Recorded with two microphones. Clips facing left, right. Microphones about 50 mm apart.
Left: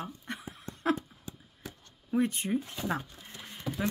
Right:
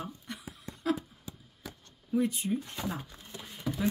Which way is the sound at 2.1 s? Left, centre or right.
Left.